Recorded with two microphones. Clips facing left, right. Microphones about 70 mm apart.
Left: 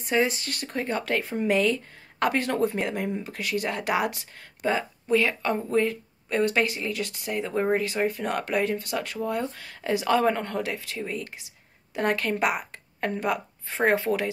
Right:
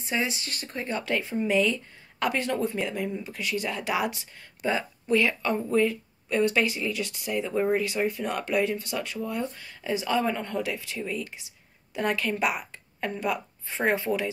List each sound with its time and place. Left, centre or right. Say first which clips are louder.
0.0 s a woman's voice: left 5 dB; left